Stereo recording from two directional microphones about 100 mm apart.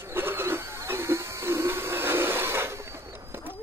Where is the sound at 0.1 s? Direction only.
20° right (ahead or behind).